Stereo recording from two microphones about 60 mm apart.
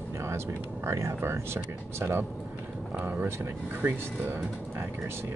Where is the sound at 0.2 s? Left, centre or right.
Right.